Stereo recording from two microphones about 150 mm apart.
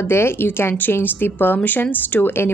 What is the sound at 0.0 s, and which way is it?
A woman's voice, 15° left (ahead or behind).